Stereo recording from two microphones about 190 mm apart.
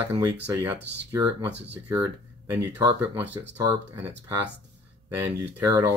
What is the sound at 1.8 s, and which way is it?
Speech, 15° right (ahead or behind).